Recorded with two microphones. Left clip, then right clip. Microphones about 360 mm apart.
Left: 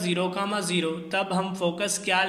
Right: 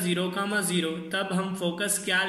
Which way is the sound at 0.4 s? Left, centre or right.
Left.